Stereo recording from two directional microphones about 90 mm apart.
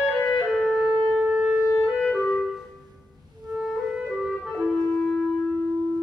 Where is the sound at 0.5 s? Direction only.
5° right (ahead or behind).